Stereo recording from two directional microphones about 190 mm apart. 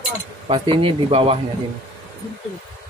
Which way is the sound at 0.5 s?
25° right (ahead or behind).